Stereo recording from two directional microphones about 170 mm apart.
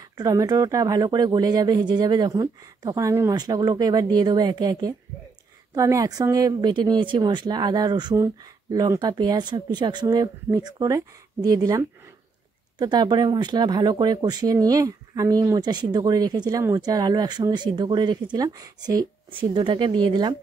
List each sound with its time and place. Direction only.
0.2 s speech: 20° right (ahead or behind)